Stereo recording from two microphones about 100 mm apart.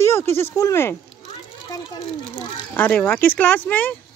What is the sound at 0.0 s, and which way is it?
Speech, 25° left (ahead or behind).